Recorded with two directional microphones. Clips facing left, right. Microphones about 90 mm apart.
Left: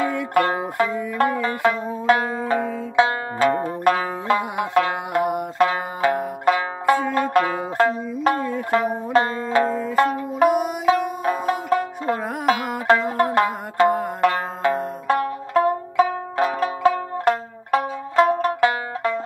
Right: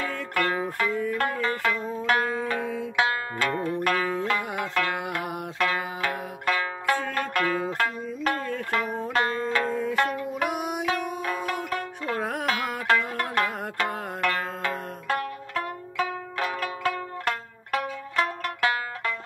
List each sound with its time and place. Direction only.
0.0 s music: 35° left (ahead or behind)
1.9 s zither: 35° left (ahead or behind)
6.4 s music: 30° left (ahead or behind)
7.7 s zither: 35° left (ahead or behind)
10.5 s music: centre (ahead or behind)
10.9 s music: 35° left (ahead or behind)